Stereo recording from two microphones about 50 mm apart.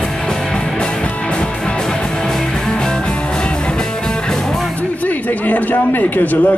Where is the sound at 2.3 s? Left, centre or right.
Centre.